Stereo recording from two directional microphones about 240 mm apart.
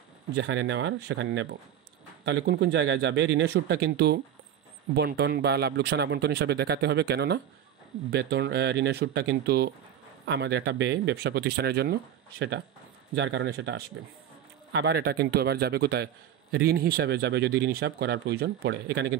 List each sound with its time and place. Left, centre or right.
0.3 s a man's voice: right